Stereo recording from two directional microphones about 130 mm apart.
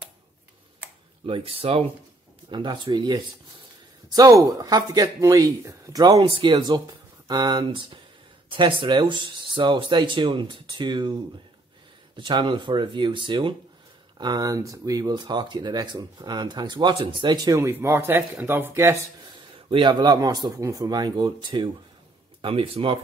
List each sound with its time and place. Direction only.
1.2 s speech: 45° right (ahead or behind)
2.5 s speech: 35° right (ahead or behind)
12.2 s speech: 40° right (ahead or behind)
17.6 s speech: 20° right (ahead or behind)
19.7 s speech: 35° right (ahead or behind)